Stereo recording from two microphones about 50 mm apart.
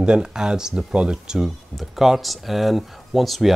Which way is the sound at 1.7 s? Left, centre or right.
Centre.